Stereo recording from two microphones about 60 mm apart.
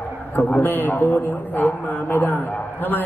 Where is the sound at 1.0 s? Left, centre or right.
Left.